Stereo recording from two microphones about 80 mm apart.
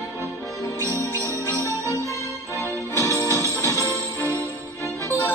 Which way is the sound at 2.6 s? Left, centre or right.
Left.